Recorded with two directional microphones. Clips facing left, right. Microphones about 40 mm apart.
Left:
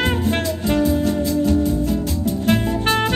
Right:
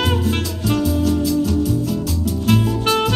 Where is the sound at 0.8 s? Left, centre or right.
Left.